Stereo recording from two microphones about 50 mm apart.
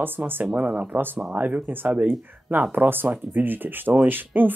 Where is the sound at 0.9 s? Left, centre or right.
Right.